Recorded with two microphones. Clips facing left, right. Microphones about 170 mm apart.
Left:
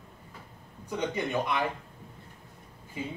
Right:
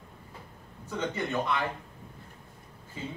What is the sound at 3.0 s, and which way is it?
Speech, 15° left (ahead or behind).